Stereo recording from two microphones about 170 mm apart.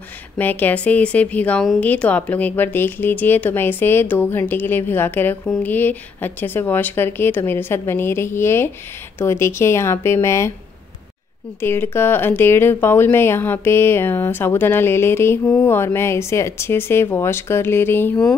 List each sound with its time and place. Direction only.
0.4 s a woman's voice: 10° left (ahead or behind)
11.6 s a woman's voice: 15° left (ahead or behind)